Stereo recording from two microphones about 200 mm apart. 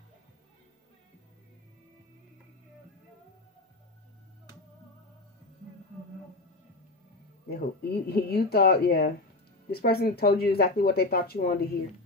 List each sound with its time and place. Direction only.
7.4 s speech: 50° left (ahead or behind)